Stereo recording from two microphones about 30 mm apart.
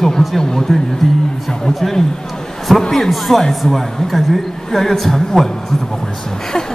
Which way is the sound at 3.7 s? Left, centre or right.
Centre.